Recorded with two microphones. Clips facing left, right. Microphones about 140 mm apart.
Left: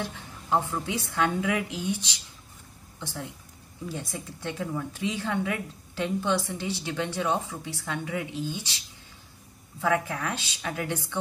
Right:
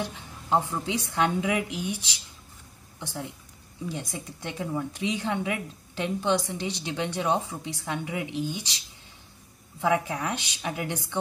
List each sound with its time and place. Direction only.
0.0 s a woman's voice: 15° right (ahead or behind)
9.8 s a woman's voice: 20° right (ahead or behind)